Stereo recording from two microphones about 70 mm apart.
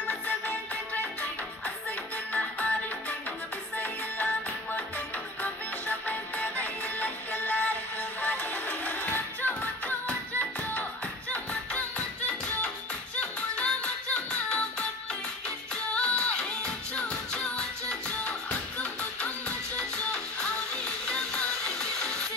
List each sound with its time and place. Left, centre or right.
2.3 s music: left